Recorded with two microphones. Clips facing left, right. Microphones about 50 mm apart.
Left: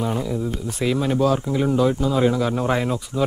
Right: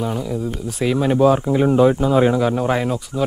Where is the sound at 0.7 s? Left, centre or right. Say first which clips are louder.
Right 4 dB; centre; by 2.4 s right.